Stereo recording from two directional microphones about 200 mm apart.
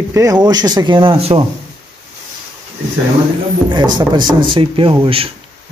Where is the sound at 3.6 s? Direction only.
20° right (ahead or behind).